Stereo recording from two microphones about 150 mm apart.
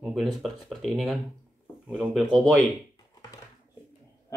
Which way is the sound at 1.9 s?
5° right (ahead or behind).